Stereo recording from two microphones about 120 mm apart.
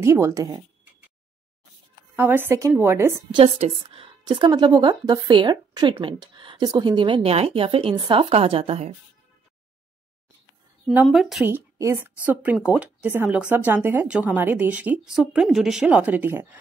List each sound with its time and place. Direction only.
0.0 s speech: 25° right (ahead or behind)
2.1 s a woman's voice: 15° right (ahead or behind)
3.4 s speech: 65° right (ahead or behind); by 4.5 s 45° right (ahead or behind)
4.5 s speech: 35° right (ahead or behind); by 8.9 s 55° right (ahead or behind)
11.1 s speech: centre (ahead or behind)
11.4 s a woman's voice: 20° right (ahead or behind)